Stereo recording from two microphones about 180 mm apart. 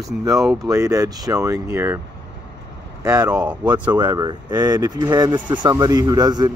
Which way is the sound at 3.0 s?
20° right (ahead or behind).